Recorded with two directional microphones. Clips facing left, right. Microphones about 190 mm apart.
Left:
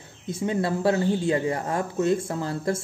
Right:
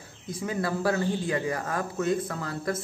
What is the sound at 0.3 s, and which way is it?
Speech, 25° left (ahead or behind).